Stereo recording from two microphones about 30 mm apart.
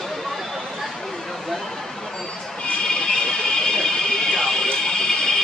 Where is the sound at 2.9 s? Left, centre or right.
Centre.